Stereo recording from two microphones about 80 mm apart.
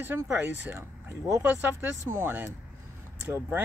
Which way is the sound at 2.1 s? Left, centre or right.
Right.